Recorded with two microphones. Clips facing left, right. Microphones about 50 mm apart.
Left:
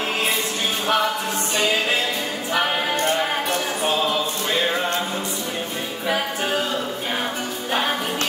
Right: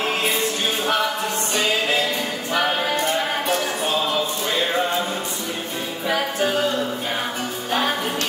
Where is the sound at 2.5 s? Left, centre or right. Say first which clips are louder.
Right 1 dB; centre.